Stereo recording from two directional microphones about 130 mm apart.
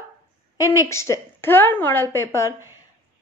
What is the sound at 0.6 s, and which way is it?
A woman's voice, 25° left (ahead or behind).